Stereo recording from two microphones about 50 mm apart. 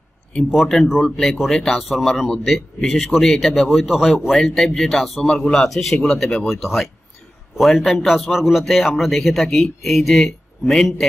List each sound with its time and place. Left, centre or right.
0.5 s a man's voice: centre
1.9 s a man's voice: centre
5.2 s speech: centre
5.5 s a man's voice: centre